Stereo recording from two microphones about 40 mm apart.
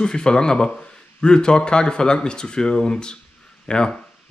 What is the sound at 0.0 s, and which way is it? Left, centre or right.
Speech, centre.